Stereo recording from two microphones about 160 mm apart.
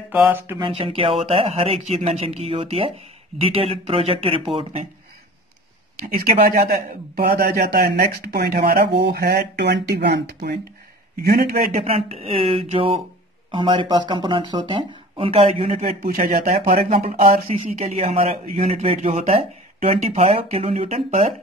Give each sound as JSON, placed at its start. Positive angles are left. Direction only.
{"t": 0.1, "sound": "speech", "side_deg": -10}
{"t": 0.6, "sound": "speech", "side_deg": -35}
{"t": 5.9, "sound": "a man's voice", "side_deg": -70}
{"t": 11.2, "sound": "a man's voice", "side_deg": -70}
{"t": 11.7, "sound": "speech", "side_deg": -40}
{"t": 16.0, "sound": "speech", "side_deg": -65}
{"t": 16.3, "sound": "speech", "side_deg": -40}